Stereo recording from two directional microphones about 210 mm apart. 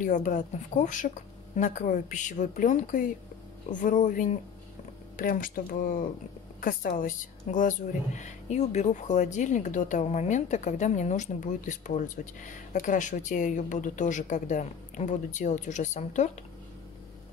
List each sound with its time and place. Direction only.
0.0 s a woman's voice: 40° left (ahead or behind)